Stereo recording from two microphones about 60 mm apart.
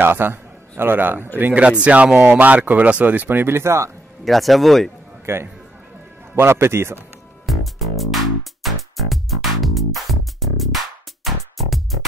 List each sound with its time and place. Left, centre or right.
0.0 s a man's voice: right
1.4 s speech: right
4.2 s speech: centre
5.2 s a man's voice: right
7.4 s music: centre